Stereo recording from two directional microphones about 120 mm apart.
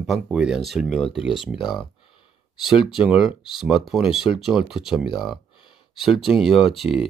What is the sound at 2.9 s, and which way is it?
Speech, 5° right (ahead or behind).